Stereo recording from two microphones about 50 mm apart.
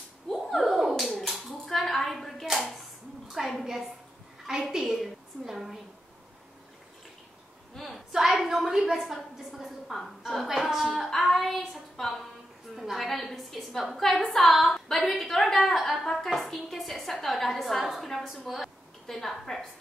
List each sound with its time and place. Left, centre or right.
0.3 s slap: centre
0.7 s music: centre
1.1 s clapping: centre
3.3 s a woman's voice: centre
7.7 s a sound: centre
17.2 s a woman's voice: centre